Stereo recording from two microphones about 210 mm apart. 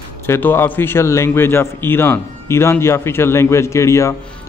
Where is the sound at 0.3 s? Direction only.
10° left (ahead or behind).